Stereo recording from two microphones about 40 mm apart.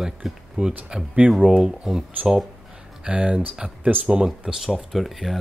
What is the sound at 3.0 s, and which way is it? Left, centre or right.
Speech, right.